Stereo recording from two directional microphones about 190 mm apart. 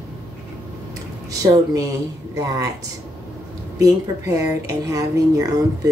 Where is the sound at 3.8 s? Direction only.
15° right (ahead or behind).